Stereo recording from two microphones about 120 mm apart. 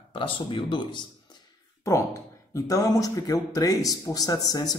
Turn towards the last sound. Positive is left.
turn(degrees=35)  # may be behind; listen again after turning